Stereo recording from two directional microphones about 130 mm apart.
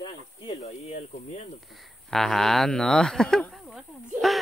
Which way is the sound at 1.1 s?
90° left.